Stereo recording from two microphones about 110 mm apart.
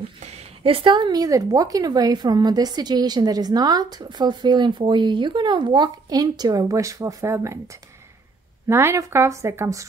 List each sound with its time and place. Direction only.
0.2 s a woman's voice: 75° right (ahead or behind); by 9.8 s 25° right (ahead or behind)